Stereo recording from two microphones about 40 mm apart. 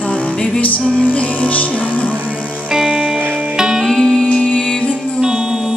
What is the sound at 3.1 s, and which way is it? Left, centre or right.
Music, right.